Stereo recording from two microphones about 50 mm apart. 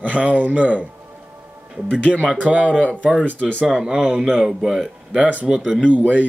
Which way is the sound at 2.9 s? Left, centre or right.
Centre.